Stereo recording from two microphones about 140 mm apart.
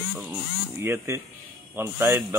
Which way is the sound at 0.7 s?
20° right (ahead or behind).